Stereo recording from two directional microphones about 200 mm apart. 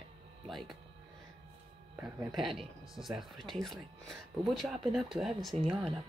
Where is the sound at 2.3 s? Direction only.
Centre (ahead or behind).